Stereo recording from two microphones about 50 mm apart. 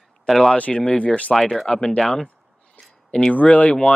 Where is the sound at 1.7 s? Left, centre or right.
Centre.